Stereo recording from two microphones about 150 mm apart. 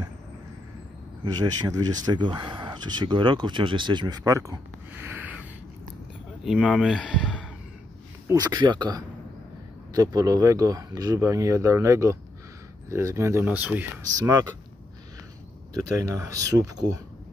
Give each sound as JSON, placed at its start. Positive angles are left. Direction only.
{"t": 1.2, "sound": "speech", "side_deg": -25}
{"t": 7.0, "sound": "speech", "side_deg": 5}
{"t": 8.3, "sound": "speech", "side_deg": -25}
{"t": 16.0, "sound": "speech", "side_deg": -25}